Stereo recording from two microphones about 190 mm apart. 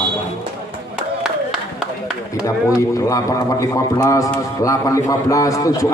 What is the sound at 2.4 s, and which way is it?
A man's voice, 15° left (ahead or behind).